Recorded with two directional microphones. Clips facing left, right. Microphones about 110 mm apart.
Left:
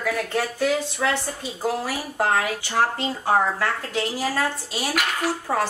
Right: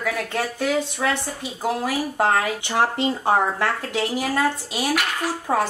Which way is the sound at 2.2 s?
20° right (ahead or behind).